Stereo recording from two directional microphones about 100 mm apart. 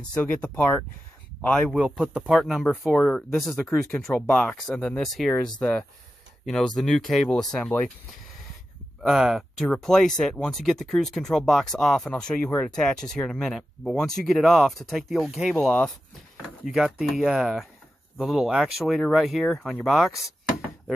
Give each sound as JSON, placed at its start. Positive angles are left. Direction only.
{"t": 0.0, "sound": "speech", "side_deg": 10}
{"t": 1.7, "sound": "speech", "side_deg": -10}
{"t": 2.9, "sound": "speech", "side_deg": 10}
{"t": 9.0, "sound": "speech", "side_deg": -5}
{"t": 9.7, "sound": "speech", "side_deg": 5}
{"t": 16.6, "sound": "speech", "side_deg": -5}